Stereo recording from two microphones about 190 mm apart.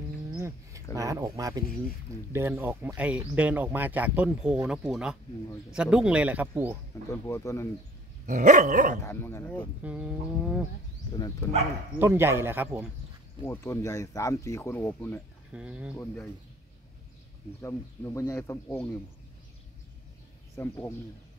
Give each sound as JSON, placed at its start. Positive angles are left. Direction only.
{"t": 0.9, "sound": "speech", "side_deg": -20}
{"t": 7.1, "sound": "speech", "side_deg": 15}
{"t": 8.3, "sound": "dog", "side_deg": -40}
{"t": 9.0, "sound": "speech", "side_deg": 15}
{"t": 9.8, "sound": "speech", "side_deg": -5}
{"t": 12.0, "sound": "speech", "side_deg": -10}
{"t": 13.4, "sound": "speech", "side_deg": 15}
{"t": 15.5, "sound": "speech", "side_deg": -5}
{"t": 17.6, "sound": "speech", "side_deg": 15}
{"t": 20.5, "sound": "speech", "side_deg": 10}